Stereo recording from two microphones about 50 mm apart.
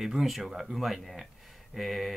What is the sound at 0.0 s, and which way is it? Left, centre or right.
A man's voice, centre.